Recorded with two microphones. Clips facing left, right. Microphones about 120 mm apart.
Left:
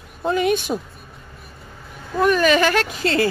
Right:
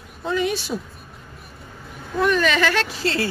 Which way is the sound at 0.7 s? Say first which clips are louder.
Left 3 dB; 40° left (ahead or behind).